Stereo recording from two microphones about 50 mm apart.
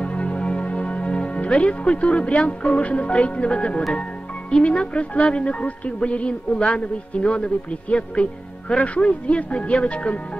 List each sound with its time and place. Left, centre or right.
0.0 s speech: left